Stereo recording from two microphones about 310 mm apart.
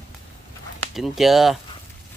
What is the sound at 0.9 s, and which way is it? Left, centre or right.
Speech, centre.